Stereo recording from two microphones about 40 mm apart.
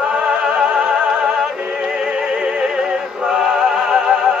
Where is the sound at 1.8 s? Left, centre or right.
Centre.